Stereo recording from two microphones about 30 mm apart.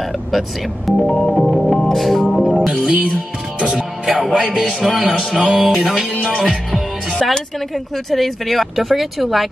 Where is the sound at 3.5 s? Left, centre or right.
Right.